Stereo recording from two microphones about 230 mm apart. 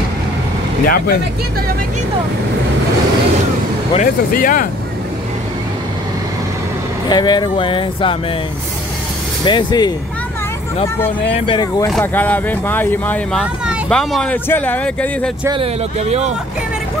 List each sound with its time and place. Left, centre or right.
0.8 s speech: left
3.9 s speech: left
7.1 s speech: centre
9.4 s speech: centre
11.4 s speech: centre
11.9 s speech: centre
15.4 s speech: right